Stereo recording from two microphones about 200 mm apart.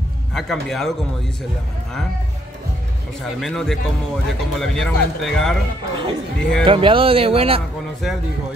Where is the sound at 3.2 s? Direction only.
Centre (ahead or behind).